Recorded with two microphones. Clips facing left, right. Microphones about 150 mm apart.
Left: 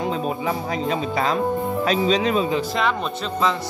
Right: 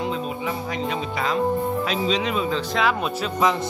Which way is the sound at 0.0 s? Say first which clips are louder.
Left 3 dB; 40° left (ahead or behind).